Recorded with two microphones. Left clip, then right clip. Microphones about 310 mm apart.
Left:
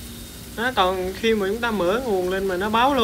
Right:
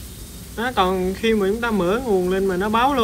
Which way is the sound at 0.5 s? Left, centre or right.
Centre.